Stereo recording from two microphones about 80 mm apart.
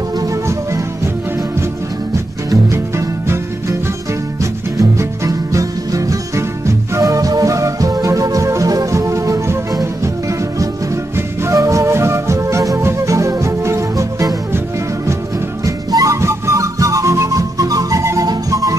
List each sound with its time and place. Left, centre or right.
0.2 s music: right
2.1 s music: right
11.1 s music: right
15.6 s music: right